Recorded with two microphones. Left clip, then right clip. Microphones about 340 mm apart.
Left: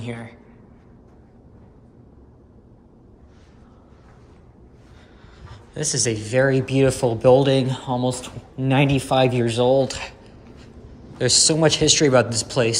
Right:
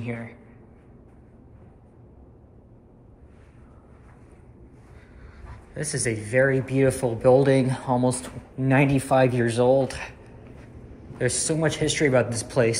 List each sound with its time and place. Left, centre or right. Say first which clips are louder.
0.0 s speech: left 1 dB; centre
5.5 s speech: left 5 dB; centre
11.1 s speech: left 8 dB; centre